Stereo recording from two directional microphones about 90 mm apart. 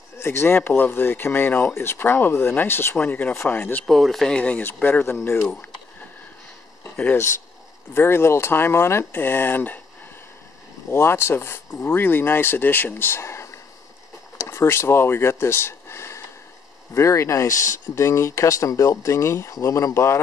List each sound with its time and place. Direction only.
0.2 s speech: 25° left (ahead or behind)
3.8 s speech: centre (ahead or behind); by 5.5 s 25° left (ahead or behind)
6.8 s a sound: 15° left (ahead or behind)
7.9 s speech: 25° left (ahead or behind)
10.9 s speech: 25° left (ahead or behind)